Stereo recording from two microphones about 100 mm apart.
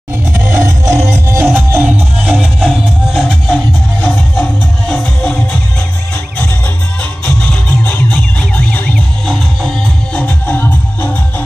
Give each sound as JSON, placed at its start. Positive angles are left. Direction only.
{"t": 0.3, "sound": "music", "side_deg": -30}
{"t": 2.2, "sound": "music", "side_deg": -5}
{"t": 7.2, "sound": "music", "side_deg": 15}